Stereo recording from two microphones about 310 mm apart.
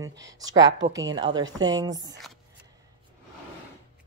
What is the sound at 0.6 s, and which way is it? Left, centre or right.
Speech, right.